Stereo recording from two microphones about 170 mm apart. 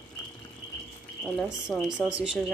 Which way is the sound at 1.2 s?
5° left (ahead or behind).